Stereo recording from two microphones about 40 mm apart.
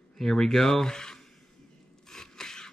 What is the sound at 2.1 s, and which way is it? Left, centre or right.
Sneeze, centre.